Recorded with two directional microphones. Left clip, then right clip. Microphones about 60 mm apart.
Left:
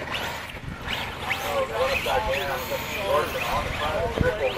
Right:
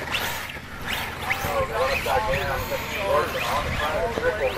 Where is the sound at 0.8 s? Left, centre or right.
Right.